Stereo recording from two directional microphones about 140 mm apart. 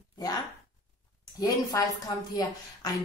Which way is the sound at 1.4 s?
25° left (ahead or behind).